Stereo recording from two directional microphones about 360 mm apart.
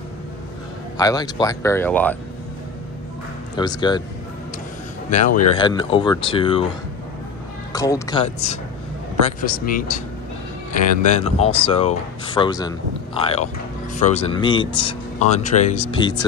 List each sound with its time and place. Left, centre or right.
0.9 s speech: centre
3.5 s speech: centre
5.1 s speech: centre
7.7 s speech: centre